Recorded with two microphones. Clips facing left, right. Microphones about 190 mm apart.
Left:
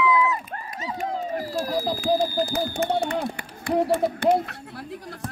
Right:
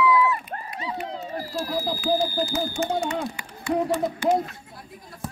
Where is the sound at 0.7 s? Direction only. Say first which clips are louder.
Left 3 dB; 45° left (ahead or behind).